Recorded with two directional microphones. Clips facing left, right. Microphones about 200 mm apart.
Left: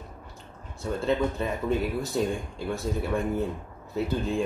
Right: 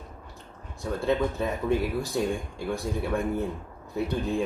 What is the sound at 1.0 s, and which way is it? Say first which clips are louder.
Speech: right 1 dB; centre (ahead or behind).